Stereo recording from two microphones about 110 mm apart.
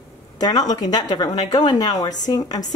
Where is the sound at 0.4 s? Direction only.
35° left (ahead or behind).